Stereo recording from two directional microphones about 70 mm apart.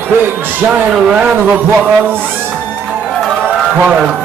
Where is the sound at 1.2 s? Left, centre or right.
Right.